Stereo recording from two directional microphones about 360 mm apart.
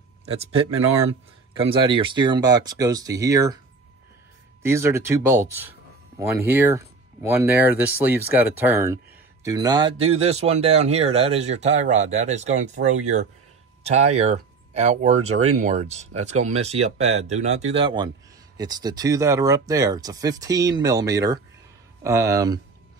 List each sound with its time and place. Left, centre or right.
0.2 s speech: centre
4.6 s speech: centre
15.1 s speech: right
15.6 s speech: centre